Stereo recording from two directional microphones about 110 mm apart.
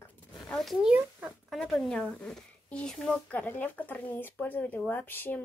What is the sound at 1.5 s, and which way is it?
Speech, 5° left (ahead or behind).